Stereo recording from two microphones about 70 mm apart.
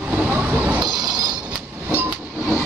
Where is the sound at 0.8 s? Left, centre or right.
Right.